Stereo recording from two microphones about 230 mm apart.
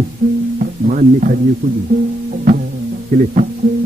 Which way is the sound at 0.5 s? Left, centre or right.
Right.